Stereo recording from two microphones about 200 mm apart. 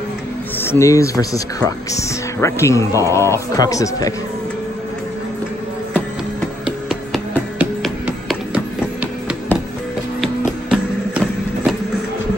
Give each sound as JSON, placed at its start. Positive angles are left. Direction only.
{"t": 0.6, "sound": "speech", "side_deg": 15}
{"t": 6.6, "sound": "music", "side_deg": 0}
{"t": 10.2, "sound": "music", "side_deg": -5}